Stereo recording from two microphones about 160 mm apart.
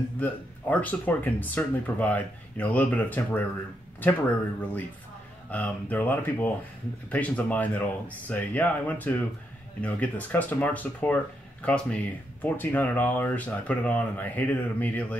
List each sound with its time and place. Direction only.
0.2 s speech: 10° left (ahead or behind)
5.5 s speech: 10° left (ahead or behind)